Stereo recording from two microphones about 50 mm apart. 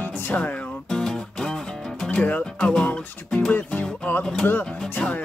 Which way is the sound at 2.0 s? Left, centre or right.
Left.